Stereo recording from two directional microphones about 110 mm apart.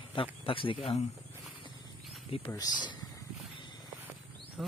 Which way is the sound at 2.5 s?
40° left (ahead or behind).